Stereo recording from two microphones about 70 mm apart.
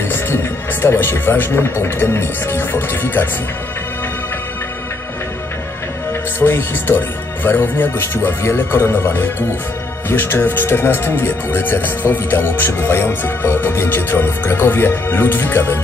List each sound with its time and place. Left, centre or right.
0.1 s speech: left
6.4 s speech: left